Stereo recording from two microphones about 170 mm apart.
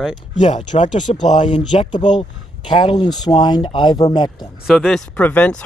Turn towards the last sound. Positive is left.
turn(degrees=10)  # may be behind; listen again after turning